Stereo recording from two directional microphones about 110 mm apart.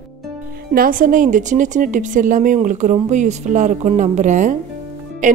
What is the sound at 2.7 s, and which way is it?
Speech, 90° right.